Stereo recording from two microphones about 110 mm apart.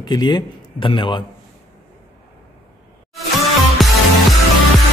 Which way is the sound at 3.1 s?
Centre (ahead or behind).